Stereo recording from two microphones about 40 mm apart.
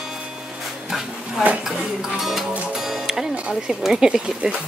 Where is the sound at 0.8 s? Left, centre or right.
Centre.